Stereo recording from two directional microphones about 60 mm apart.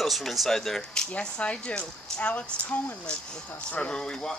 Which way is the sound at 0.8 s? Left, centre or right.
Centre.